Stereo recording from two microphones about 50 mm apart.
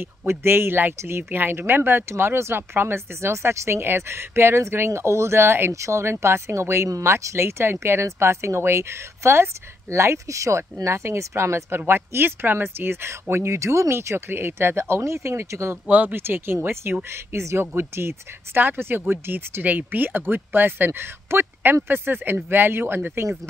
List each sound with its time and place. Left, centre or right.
0.3 s speech: right
5.7 s speech: right
11.9 s speech: right
15.9 s speech: right
16.2 s speech: right
19.6 s speech: right